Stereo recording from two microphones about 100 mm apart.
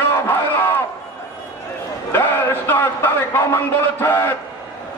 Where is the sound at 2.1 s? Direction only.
25° left (ahead or behind).